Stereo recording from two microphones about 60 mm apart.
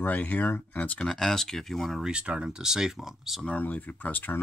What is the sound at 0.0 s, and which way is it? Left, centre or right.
Speech, left.